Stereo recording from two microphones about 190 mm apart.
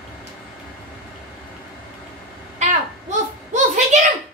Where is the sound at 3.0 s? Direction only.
40° right (ahead or behind).